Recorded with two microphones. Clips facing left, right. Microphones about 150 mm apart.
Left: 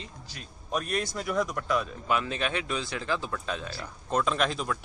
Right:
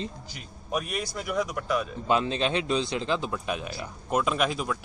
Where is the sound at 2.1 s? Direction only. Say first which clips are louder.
Right 5 dB; 25° right (ahead or behind); by 4.8 s 5° right (ahead or behind).